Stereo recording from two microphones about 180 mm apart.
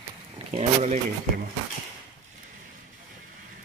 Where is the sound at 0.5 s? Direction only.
40° right (ahead or behind).